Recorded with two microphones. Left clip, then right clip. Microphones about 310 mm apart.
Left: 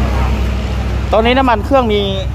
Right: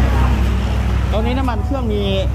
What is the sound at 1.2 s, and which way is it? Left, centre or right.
Speech, centre.